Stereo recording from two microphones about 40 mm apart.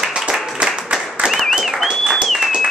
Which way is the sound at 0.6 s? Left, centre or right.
Centre.